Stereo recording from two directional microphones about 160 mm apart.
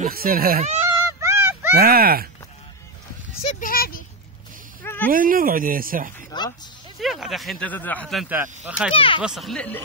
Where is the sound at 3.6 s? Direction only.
65° left (ahead or behind).